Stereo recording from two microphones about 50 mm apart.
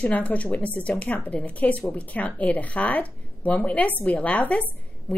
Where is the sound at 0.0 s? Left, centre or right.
Left.